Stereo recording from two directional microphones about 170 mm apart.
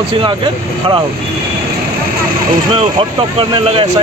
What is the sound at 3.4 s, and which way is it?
Speech, 30° right (ahead or behind).